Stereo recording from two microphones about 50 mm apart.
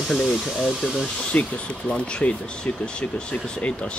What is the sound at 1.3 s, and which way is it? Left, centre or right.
Speech, left.